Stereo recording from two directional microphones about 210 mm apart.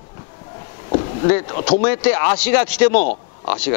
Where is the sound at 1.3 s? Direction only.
15° left (ahead or behind).